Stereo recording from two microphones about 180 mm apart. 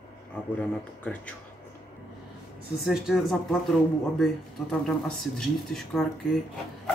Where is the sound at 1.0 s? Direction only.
5° left (ahead or behind).